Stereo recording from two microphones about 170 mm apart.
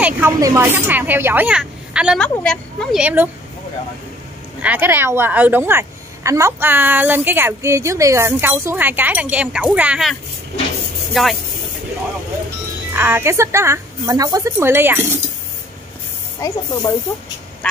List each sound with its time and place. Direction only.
0.0 s a woman's voice: 15° right (ahead or behind); by 3.0 s 5° left (ahead or behind)
3.0 s a woman's voice: 10° right (ahead or behind)
4.6 s a woman's voice: 10° right (ahead or behind)
11.1 s a woman's voice: centre (ahead or behind)
12.9 s a woman's voice: 15° right (ahead or behind)
16.3 s speech: 20° left (ahead or behind)